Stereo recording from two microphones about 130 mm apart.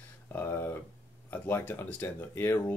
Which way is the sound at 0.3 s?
15° left (ahead or behind).